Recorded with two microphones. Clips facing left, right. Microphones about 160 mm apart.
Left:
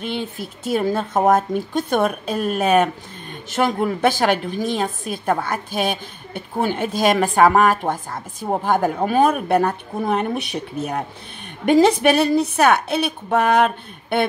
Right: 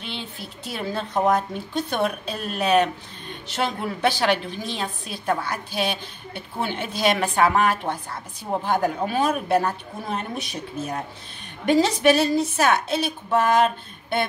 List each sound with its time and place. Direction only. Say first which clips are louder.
0.0 s a woman's voice: left 8 dB; 50° left (ahead or behind); by 13.7 s 65° left (ahead or behind)